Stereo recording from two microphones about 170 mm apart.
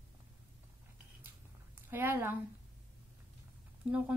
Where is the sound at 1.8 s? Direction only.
10° right (ahead or behind).